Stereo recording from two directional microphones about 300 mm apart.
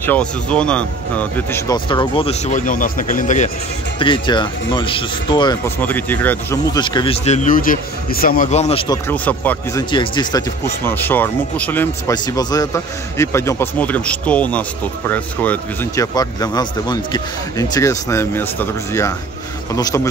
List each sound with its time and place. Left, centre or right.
0.0 s speech: centre